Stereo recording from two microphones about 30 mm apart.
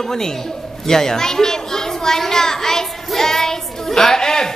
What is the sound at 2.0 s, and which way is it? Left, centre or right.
Child singing, centre.